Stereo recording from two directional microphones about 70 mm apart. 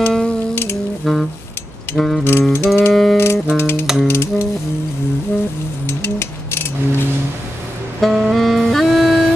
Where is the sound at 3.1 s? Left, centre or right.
Left.